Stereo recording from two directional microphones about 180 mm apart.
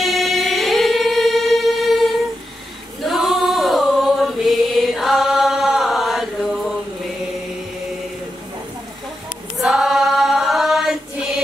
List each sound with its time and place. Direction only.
0.0 s choir: centre (ahead or behind)
3.1 s chant: centre (ahead or behind)
9.6 s choir: centre (ahead or behind)